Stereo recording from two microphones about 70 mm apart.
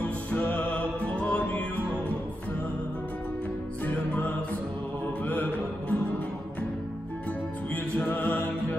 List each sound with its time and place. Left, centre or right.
0.0 s music: left
3.8 s music: left
5.2 s mantra: left
7.7 s music: left